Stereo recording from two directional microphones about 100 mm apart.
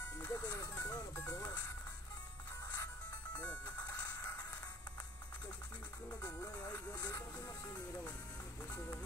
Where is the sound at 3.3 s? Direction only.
15° left (ahead or behind).